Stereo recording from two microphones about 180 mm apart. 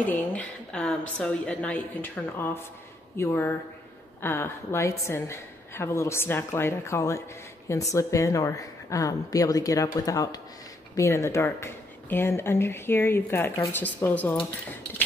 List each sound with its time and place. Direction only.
0.0 s a woman's voice: 10° left (ahead or behind)